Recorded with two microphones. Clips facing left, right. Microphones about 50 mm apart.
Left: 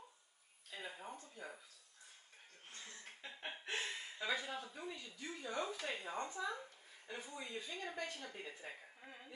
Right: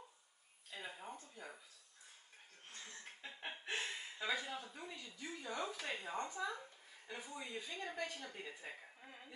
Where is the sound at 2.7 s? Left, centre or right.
Centre.